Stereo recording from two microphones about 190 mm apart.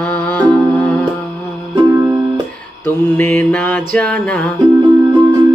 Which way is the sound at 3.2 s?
10° left (ahead or behind).